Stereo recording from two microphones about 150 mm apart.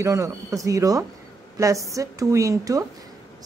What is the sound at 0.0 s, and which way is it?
A woman's voice, 20° right (ahead or behind).